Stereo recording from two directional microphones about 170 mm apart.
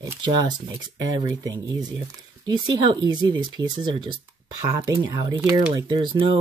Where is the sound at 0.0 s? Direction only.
25° right (ahead or behind).